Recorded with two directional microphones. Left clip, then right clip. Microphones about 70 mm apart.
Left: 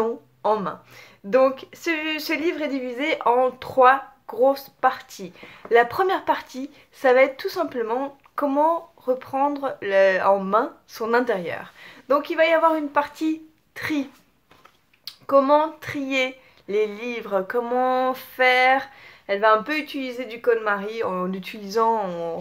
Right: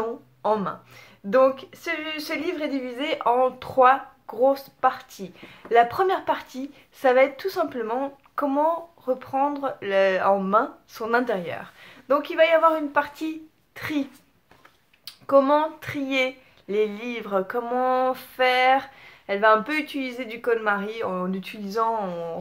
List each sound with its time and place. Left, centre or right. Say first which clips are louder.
0.4 s speech: left 1 dB; left
1.5 s speech: left 3 dB; left
2.4 s speech: left 3 dB; left
15.0 s speech: left 1 dB; centre; by 18.5 s left
18.5 s speech: left 1 dB; left
18.9 s a woman's voice: left 1 dB; centre
21.0 s speech: left 2 dB; left
22.1 s speech: left 3 dB; left